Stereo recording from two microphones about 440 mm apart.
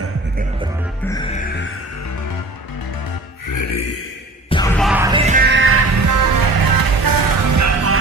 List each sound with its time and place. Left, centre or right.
3.4 s music: left
4.5 s music: centre; by 8.0 s right